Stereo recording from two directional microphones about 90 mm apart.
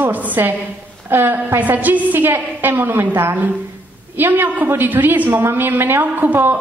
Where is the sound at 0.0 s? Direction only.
20° right (ahead or behind).